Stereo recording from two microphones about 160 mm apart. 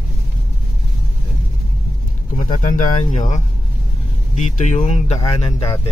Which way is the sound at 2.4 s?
50° left (ahead or behind).